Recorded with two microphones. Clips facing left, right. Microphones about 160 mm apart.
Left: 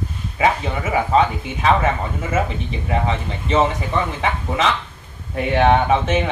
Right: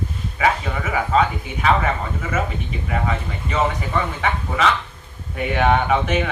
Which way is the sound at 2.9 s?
25° left (ahead or behind).